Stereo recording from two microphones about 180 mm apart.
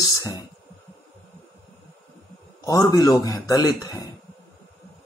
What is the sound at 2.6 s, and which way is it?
Speech, 20° left (ahead or behind).